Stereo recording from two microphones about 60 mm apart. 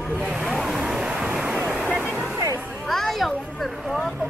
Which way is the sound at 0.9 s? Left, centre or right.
Centre.